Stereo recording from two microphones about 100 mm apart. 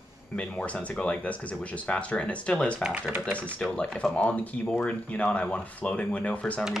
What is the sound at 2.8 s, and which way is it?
Speech, 10° right (ahead or behind).